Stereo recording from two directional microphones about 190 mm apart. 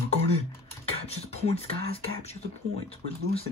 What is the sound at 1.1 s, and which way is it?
Speech, 35° left (ahead or behind).